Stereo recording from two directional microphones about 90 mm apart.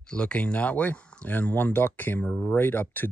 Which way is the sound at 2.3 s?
10° left (ahead or behind).